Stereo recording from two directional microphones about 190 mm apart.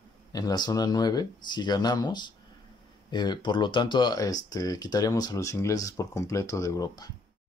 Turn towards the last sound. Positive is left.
turn(degrees=15)  # may be behind; listen again after turning